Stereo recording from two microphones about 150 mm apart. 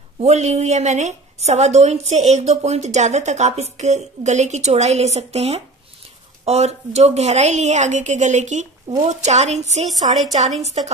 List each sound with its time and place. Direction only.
0.2 s a woman's voice: 45° right (ahead or behind)